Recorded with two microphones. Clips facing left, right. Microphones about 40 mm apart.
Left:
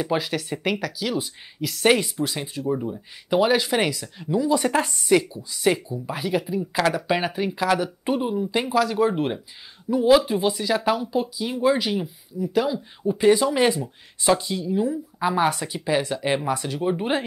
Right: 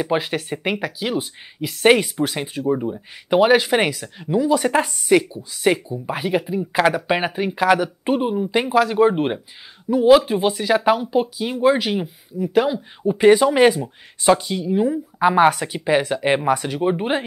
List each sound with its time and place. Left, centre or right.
0.0 s speech: right
2.6 s speech: right
4.4 s speech: centre; by 9.4 s right
9.9 s speech: right
10.2 s speech: right
12.4 s speech: right
13.7 s speech: centre
14.4 s speech: right